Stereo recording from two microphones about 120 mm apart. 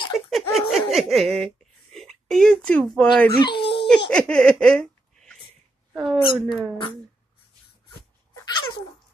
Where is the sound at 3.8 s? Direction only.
10° left (ahead or behind).